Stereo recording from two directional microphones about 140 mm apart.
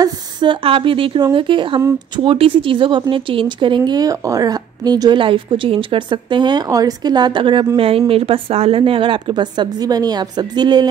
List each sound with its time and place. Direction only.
0.0 s speech: 35° right (ahead or behind)